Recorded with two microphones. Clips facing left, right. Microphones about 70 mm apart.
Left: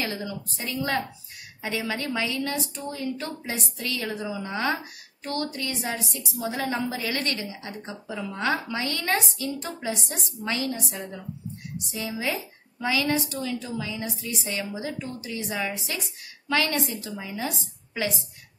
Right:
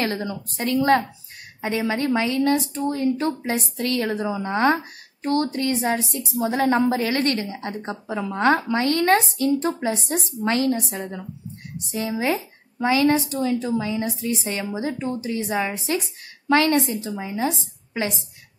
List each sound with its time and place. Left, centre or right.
0.0 s a woman's voice: right
1.6 s a woman's voice: right